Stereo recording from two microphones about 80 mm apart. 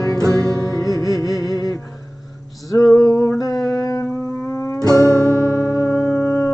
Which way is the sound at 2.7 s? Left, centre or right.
Left.